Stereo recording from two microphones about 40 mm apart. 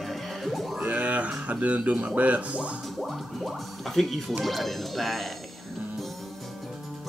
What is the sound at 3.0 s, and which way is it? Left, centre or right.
Speech, centre.